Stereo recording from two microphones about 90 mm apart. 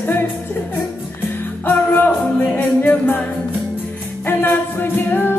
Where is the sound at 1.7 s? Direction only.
20° left (ahead or behind).